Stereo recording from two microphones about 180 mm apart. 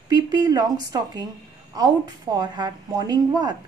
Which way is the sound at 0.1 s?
20° right (ahead or behind).